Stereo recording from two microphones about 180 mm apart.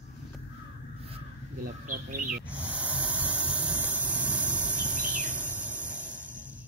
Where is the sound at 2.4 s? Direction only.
5° right (ahead or behind).